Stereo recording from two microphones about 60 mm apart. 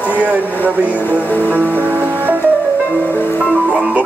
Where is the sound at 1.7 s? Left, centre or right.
Right.